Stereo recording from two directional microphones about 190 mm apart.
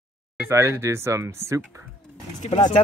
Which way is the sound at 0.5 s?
15° right (ahead or behind).